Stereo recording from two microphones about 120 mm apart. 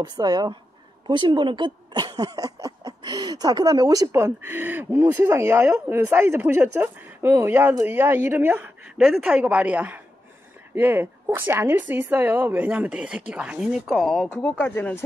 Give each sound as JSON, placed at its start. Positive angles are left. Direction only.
{"t": 0.0, "sound": "speech", "side_deg": -35}
{"t": 8.9, "sound": "speech", "side_deg": -5}
{"t": 14.6, "sound": "speech", "side_deg": 15}